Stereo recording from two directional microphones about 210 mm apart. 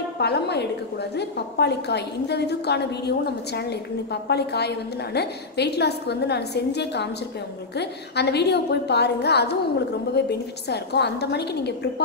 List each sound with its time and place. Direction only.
0.2 s a woman's voice: 50° left (ahead or behind)